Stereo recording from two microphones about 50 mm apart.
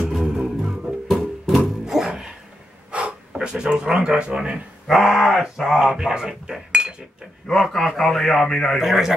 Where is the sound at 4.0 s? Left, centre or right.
Centre.